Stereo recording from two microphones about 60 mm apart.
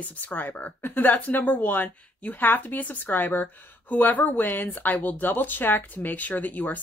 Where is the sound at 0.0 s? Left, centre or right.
Left.